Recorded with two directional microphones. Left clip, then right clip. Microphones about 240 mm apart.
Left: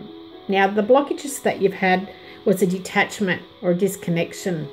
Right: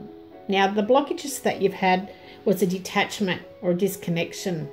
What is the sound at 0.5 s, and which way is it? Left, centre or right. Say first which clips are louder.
Speech: left 4 dB; centre.